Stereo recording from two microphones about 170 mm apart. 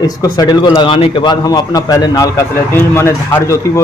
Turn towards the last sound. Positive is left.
turn(degrees=15)  # may be behind; listen again after turning